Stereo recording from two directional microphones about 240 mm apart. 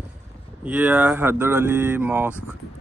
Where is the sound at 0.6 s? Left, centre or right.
Centre.